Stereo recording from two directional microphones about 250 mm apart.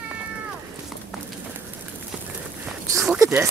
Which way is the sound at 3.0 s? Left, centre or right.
Centre.